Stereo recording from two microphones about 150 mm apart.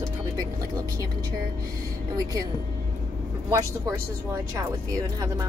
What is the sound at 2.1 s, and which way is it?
Speech, 25° right (ahead or behind).